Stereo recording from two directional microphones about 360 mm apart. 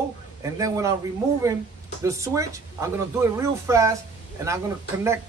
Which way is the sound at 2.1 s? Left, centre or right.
Centre.